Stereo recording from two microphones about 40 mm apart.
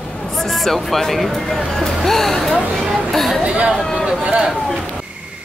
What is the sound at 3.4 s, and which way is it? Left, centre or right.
Speech, right.